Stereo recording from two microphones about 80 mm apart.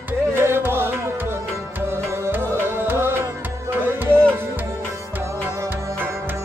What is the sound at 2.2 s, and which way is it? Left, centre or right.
Music, right.